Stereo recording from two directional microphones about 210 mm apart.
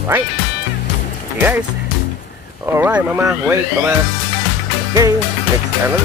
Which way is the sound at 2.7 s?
10° right (ahead or behind).